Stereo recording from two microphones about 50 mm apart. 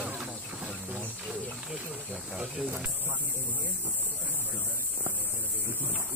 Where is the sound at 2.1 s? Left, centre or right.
Centre.